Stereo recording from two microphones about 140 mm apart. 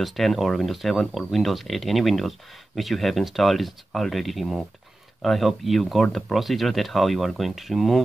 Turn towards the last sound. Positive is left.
turn(degrees=0)  # may be behind; listen again after turning